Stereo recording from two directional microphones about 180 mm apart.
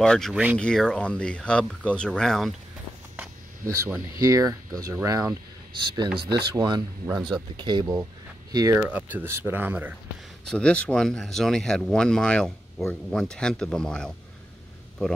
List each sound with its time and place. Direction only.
0.0 s speech: 5° left (ahead or behind)
3.2 s speech: 15° right (ahead or behind)
8.7 s speech: 10° right (ahead or behind)
10.5 s speech: 5° left (ahead or behind)